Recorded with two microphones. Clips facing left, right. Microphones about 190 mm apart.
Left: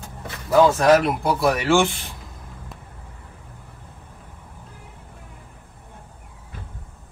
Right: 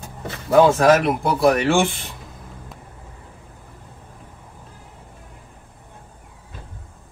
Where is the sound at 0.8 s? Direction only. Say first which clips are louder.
Right 1 dB; centre (ahead or behind).